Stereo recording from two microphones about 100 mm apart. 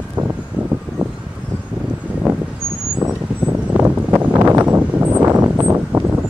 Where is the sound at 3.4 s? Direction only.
10° right (ahead or behind).